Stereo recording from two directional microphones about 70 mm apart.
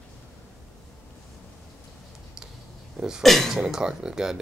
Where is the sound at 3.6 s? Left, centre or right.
Centre.